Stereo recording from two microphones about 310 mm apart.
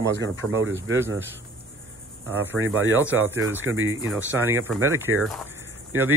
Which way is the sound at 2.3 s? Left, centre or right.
Centre.